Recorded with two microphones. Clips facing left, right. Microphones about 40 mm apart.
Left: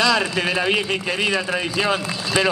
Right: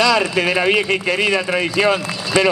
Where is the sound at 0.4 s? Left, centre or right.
Centre.